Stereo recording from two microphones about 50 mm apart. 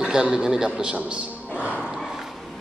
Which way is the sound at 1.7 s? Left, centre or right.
Centre.